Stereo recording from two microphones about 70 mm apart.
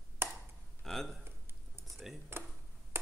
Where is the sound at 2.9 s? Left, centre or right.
Right.